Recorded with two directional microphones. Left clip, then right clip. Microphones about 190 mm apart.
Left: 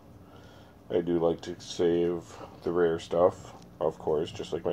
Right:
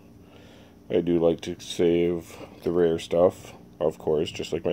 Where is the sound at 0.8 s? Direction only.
45° right (ahead or behind).